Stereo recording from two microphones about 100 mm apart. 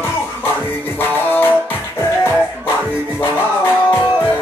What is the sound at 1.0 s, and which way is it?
Music, 20° left (ahead or behind).